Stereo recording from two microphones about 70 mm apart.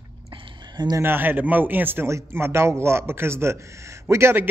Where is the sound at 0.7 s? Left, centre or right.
Right.